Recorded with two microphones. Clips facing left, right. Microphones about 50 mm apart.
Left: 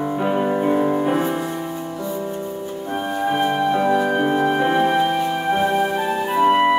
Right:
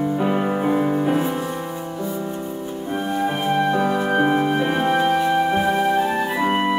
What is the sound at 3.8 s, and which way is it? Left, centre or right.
Music, centre.